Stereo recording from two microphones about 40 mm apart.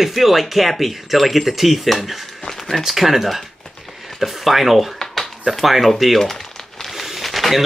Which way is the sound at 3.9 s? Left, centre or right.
Centre.